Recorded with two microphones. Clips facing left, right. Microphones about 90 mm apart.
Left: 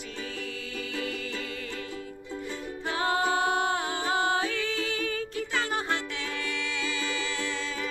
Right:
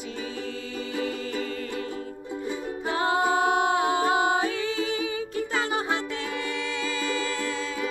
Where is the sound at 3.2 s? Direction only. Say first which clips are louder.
Right 4 dB; 5° right (ahead or behind).